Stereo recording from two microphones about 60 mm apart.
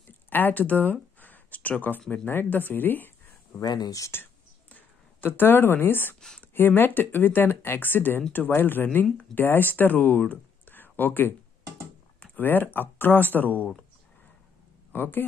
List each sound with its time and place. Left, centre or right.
0.3 s speech: left
1.2 s a sound: left
2.2 s speech: left
3.8 s speech: left
4.1 s whispering: left
6.4 s speech: left
14.9 s speech: left